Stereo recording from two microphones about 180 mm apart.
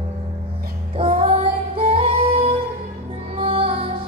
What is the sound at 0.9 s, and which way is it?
Music, 30° right (ahead or behind).